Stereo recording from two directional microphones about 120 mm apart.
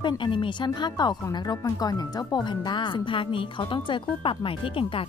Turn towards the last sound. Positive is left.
turn(degrees=50)  # may be behind; listen again after turning